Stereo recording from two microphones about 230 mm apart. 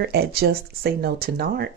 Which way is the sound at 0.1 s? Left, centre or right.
Right.